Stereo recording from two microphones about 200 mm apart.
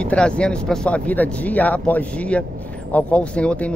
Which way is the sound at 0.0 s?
5° left (ahead or behind).